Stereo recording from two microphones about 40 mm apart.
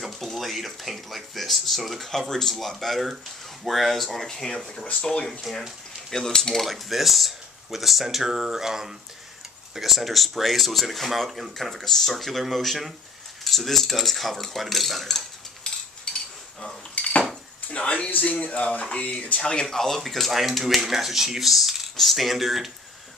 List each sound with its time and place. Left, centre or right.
0.0 s speech: centre
2.2 s speech: centre
6.0 s speech: centre
6.6 s speech: centre
8.3 s a sound: centre
9.8 s speech: centre
16.1 s a sound: left
16.9 s dishes: left
17.6 s a sound: left
18.1 s speech: left
19.4 s speech: centre